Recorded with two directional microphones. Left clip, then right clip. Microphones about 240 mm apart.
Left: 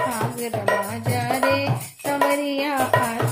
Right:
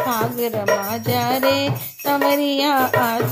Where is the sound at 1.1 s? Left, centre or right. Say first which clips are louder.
Right 3 dB; right.